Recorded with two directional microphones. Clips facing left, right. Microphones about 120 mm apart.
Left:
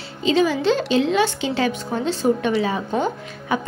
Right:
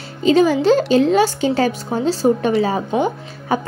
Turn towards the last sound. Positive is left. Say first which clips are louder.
# right 3 dB
turn(degrees=-35)  # may be behind; listen again after turning